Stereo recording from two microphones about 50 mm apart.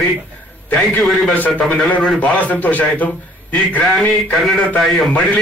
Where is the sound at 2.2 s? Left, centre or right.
Left.